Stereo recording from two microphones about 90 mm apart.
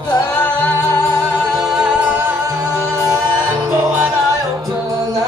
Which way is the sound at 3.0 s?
40° right (ahead or behind).